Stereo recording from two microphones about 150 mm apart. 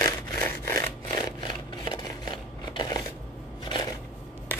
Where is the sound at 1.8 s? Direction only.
25° left (ahead or behind).